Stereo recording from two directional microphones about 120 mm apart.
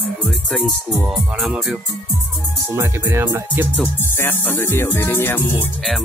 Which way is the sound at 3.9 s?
20° left (ahead or behind).